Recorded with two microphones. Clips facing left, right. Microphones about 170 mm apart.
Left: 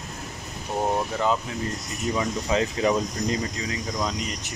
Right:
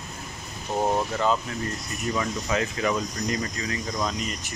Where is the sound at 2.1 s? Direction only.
20° left (ahead or behind).